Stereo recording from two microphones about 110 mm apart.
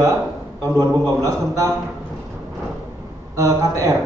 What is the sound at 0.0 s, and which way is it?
A man's voice, 30° right (ahead or behind).